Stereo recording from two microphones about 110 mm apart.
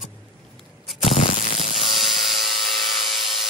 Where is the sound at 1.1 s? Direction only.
75° left (ahead or behind).